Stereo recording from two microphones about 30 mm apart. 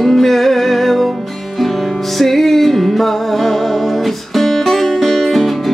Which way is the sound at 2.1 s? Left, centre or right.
Centre.